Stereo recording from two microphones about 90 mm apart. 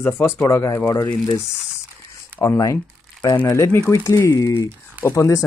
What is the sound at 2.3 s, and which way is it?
Crumpling, 25° right (ahead or behind).